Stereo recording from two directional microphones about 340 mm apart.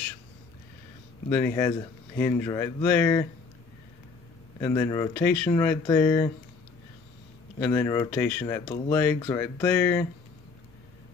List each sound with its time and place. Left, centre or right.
1.3 s speech: centre
4.6 s speech: centre
7.5 s speech: centre